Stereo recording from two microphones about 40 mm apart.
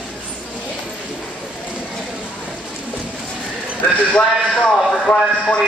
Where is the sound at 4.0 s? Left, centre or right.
Left.